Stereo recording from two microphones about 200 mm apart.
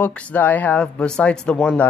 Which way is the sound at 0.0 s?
5° left (ahead or behind).